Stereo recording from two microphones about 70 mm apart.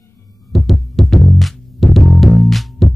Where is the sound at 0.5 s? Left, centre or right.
Centre.